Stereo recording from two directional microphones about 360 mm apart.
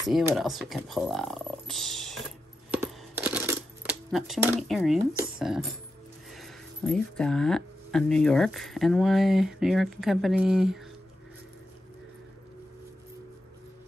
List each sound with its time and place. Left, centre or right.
0.0 s speech: centre
2.7 s a sound: centre
6.3 s speech: centre